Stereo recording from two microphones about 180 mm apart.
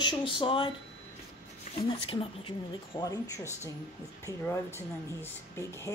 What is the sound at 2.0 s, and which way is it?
Speech, 30° left (ahead or behind).